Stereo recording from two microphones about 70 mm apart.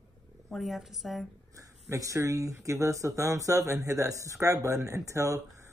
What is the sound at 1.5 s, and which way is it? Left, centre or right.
Speech, right.